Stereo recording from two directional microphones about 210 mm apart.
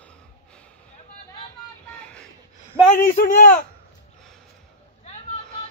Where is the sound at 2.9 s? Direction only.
40° left (ahead or behind).